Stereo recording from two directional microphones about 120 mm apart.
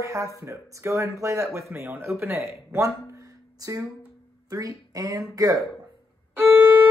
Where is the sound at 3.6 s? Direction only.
30° right (ahead or behind).